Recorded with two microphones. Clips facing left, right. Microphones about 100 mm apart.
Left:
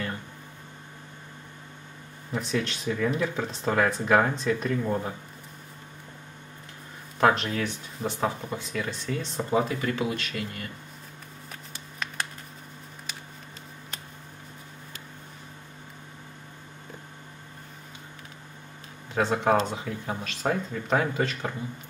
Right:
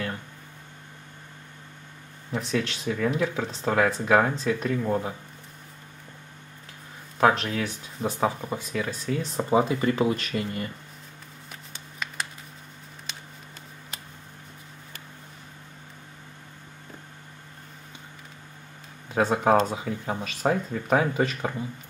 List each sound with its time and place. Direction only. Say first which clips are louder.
2.3 s speech: right 1 dB; centre (ahead or behind)
7.2 s speech: right 1 dB; 5° right (ahead or behind)
9.4 s speech: right 3 dB; 20° right (ahead or behind)
9.8 s speech: right 5 dB; 30° right (ahead or behind)
11.7 s a sound: even; centre (ahead or behind)
19.1 s speech: right 2 dB; 10° right (ahead or behind)